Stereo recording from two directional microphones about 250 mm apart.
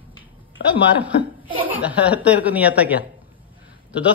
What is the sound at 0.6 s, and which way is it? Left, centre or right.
Speech, left.